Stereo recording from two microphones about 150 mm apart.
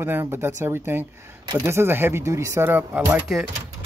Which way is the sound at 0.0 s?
15° right (ahead or behind).